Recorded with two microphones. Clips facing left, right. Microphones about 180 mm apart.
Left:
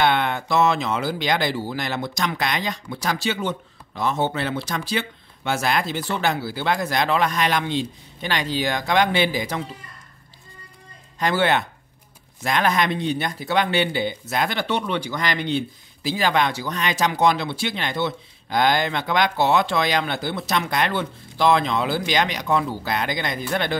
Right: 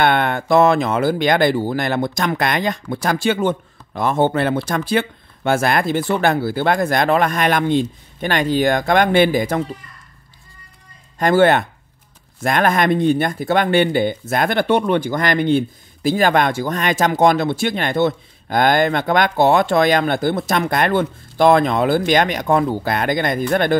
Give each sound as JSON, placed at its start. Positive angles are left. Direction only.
{"t": 0.0, "sound": "speech", "side_deg": -55}
{"t": 11.1, "sound": "speech", "side_deg": -50}